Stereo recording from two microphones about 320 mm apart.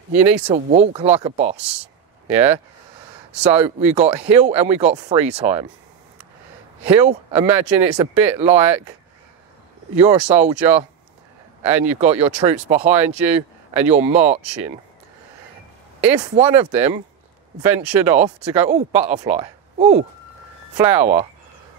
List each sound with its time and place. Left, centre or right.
0.1 s speech: centre
6.8 s speech: centre
10.2 s speech: centre
16.1 s speech: centre